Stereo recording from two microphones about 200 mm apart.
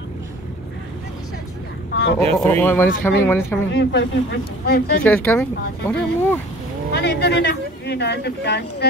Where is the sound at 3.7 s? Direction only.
60° left (ahead or behind).